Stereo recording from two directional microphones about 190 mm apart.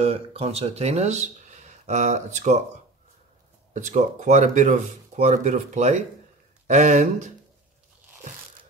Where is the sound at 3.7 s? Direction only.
40° right (ahead or behind).